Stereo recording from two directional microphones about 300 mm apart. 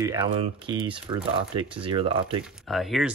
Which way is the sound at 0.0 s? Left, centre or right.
Centre.